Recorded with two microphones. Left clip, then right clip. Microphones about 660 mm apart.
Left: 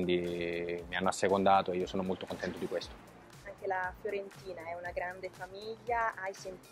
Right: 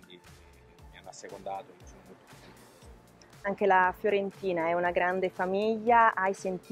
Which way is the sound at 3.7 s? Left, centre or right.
Right.